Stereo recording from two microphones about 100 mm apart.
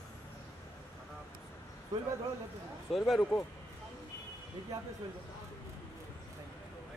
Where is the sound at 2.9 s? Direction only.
Centre (ahead or behind).